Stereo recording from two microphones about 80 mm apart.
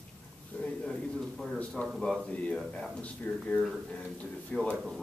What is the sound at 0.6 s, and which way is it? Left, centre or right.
A man's voice, centre.